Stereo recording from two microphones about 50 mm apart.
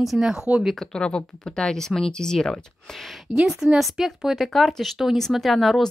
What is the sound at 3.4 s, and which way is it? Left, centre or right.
Speech, centre.